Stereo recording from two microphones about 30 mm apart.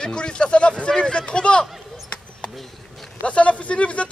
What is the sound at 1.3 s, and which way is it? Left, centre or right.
Speech, left.